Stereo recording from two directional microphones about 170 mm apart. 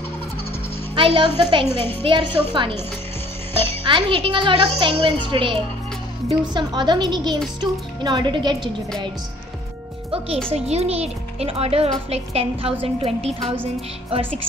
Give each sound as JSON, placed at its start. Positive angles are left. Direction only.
{"t": 0.9, "sound": "a child's voice", "side_deg": -30}
{"t": 1.8, "sound": "a woman's voice", "side_deg": 10}
{"t": 2.0, "sound": "a child's voice", "side_deg": -30}
{"t": 3.5, "sound": "music", "side_deg": 15}
{"t": 3.8, "sound": "a child's voice", "side_deg": -30}
{"t": 10.1, "sound": "a child's voice", "side_deg": -35}